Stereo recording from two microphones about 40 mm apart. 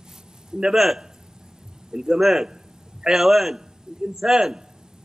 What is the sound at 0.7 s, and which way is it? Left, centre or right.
A man's voice, centre.